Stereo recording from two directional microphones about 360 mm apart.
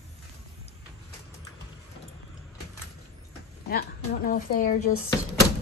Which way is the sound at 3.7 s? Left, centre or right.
Left.